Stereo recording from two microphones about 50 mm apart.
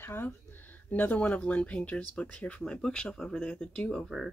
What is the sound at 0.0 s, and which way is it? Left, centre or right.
Speech, left.